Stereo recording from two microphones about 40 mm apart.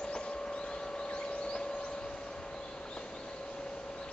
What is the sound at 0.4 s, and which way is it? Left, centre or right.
Vehicle, centre.